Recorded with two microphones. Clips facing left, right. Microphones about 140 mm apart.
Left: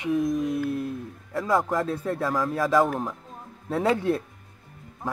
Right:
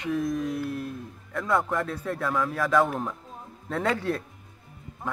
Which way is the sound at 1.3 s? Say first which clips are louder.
Left 2 dB; 30° left (ahead or behind).